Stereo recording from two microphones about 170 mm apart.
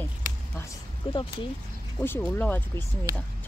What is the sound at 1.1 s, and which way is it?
Speech, 30° left (ahead or behind).